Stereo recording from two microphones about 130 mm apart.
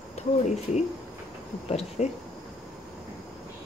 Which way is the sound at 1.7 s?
55° left (ahead or behind).